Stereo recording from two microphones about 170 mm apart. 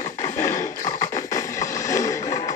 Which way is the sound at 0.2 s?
15° left (ahead or behind).